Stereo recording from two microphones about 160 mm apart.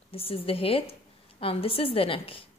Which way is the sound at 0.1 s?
35° left (ahead or behind).